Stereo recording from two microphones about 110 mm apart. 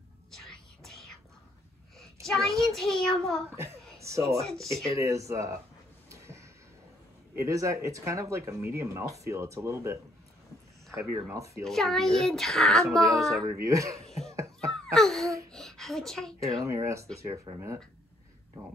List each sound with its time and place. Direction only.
0.3 s whispering: 5° left (ahead or behind)
2.2 s a child's voice: centre (ahead or behind)
3.4 s chuckle: 25° right (ahead or behind)
4.5 s a child's voice: centre (ahead or behind)
4.8 s speech: 30° right (ahead or behind)
6.0 s a sound: 25° right (ahead or behind)
7.3 s speech: 30° right (ahead or behind)
11.2 s speech: 25° right (ahead or behind)
11.6 s a child's voice: 5° left (ahead or behind)
13.4 s speech: 30° right (ahead or behind)
14.7 s a sound: 5° left (ahead or behind)
15.2 s a sound: 30° right (ahead or behind)
15.5 s a sound: 5° left (ahead or behind)
16.6 s speech: 25° right (ahead or behind)